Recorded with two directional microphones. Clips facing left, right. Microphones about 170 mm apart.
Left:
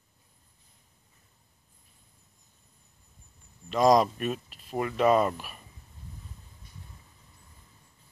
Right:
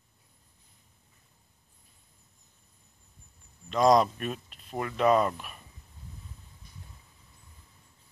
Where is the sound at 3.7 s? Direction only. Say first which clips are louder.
Left 1 dB; centre (ahead or behind).